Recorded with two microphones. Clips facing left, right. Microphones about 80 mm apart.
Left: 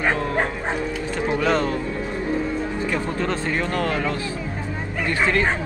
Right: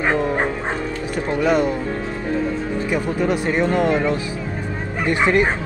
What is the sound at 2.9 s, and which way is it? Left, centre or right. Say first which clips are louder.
Speech: right 7 dB; centre.